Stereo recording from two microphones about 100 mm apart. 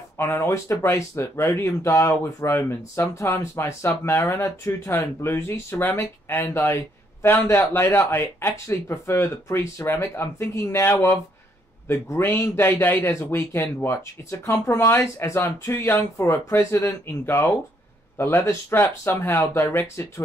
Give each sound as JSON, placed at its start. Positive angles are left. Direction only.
{"t": 0.2, "sound": "speech", "side_deg": 25}